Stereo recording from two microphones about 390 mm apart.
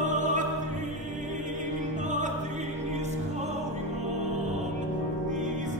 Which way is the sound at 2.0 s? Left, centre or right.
Centre.